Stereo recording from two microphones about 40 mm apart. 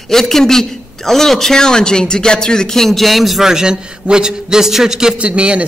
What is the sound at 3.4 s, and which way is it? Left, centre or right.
A woman's voice, centre.